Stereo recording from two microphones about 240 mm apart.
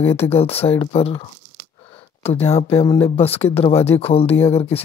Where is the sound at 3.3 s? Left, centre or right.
Centre.